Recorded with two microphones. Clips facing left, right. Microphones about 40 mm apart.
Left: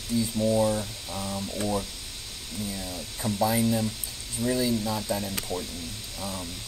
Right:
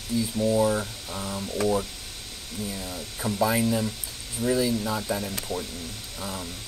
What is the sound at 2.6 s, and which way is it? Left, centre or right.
Speech, left.